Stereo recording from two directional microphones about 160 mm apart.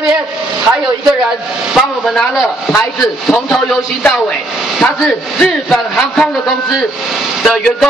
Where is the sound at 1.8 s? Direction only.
Centre (ahead or behind).